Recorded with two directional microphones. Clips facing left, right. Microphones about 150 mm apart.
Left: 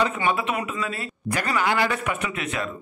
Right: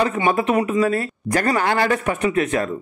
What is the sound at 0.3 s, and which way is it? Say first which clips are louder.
Speech: right 7 dB; 40° right (ahead or behind).